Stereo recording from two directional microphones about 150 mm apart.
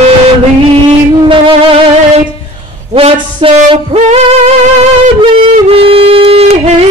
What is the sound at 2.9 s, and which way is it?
Music, 35° right (ahead or behind).